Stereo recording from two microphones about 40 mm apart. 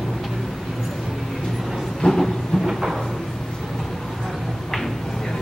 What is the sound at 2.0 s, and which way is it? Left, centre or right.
Train, left.